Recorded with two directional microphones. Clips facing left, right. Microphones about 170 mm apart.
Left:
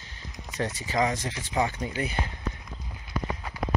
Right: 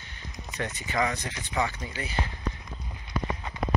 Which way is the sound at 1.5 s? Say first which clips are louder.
Left 2 dB; 25° left (ahead or behind).